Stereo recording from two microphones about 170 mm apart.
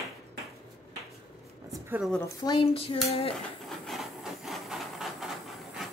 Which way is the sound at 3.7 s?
Centre (ahead or behind).